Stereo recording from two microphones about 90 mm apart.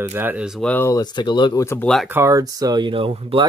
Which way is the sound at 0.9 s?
55° left (ahead or behind).